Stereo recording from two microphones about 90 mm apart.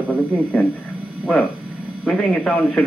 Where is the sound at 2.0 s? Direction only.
15° left (ahead or behind).